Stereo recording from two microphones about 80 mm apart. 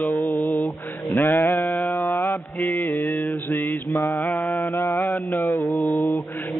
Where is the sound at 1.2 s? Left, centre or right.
Left.